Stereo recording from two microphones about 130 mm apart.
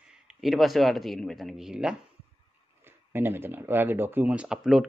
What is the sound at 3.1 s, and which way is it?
Speech, 15° right (ahead or behind).